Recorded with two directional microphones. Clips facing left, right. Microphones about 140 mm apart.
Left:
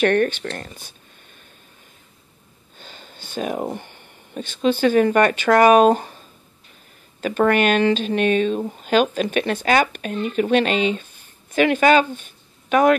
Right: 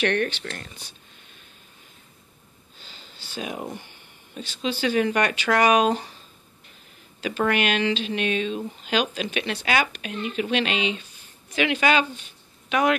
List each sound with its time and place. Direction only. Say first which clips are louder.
0.0 s speech: left 6 dB; 45° left (ahead or behind)
2.8 s a sound: left 6 dB; 50° left (ahead or behind)
3.7 s speech: left 6 dB; 50° left (ahead or behind)